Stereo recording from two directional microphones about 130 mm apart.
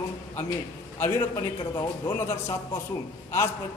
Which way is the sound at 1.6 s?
30° left (ahead or behind).